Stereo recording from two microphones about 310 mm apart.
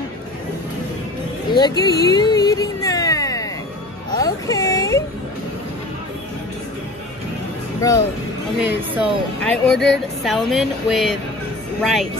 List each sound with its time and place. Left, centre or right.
1.5 s a sound: centre
7.8 s speech: centre
8.5 s speech: centre